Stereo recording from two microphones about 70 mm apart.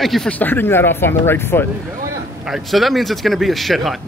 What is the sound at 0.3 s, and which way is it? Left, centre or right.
Speech, left.